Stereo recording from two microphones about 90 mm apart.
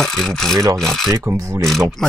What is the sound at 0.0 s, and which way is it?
Speech, 5° left (ahead or behind).